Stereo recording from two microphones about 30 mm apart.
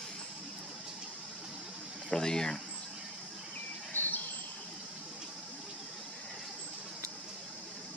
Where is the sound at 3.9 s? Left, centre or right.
Left.